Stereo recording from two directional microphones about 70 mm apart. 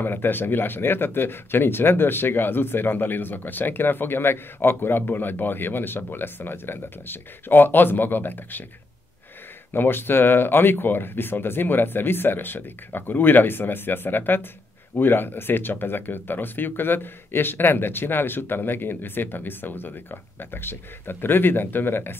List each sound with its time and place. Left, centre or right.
0.0 s speech: left
9.7 s speech: left